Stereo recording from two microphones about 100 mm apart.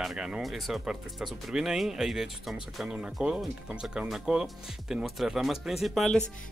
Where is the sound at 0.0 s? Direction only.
5° right (ahead or behind).